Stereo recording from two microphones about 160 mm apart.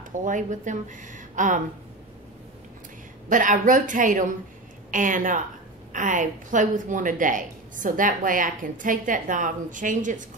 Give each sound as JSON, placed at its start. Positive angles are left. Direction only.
{"t": 0.2, "sound": "speech", "side_deg": -55}
{"t": 3.3, "sound": "a woman's voice", "side_deg": -55}